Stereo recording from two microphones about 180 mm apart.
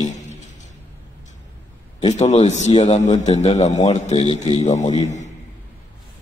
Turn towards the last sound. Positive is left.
turn(degrees=40)  # may be behind; listen again after turning